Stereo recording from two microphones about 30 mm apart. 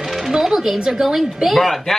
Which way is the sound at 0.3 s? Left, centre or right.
Centre.